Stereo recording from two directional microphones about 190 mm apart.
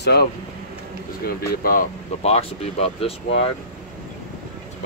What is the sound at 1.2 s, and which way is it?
Speech, 50° left (ahead or behind).